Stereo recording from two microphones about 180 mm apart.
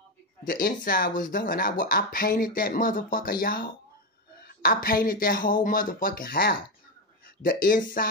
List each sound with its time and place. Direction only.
0.5 s speech: 55° left (ahead or behind)